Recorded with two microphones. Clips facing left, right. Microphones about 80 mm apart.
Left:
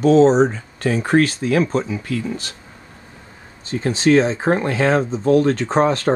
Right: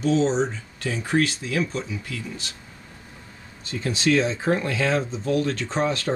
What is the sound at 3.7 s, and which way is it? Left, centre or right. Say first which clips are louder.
Speech: left 6 dB; left.